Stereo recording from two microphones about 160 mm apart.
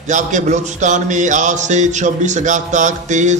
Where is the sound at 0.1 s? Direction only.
50° right (ahead or behind).